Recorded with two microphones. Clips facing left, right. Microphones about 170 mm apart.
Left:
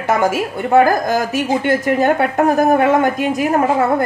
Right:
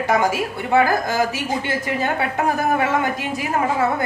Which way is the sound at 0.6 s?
50° left (ahead or behind).